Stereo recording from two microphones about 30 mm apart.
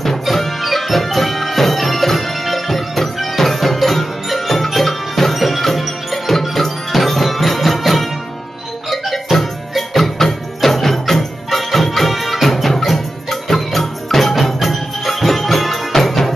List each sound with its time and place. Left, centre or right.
0.3 s music: centre